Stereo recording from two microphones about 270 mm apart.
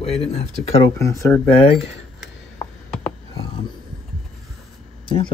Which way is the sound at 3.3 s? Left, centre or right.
Centre.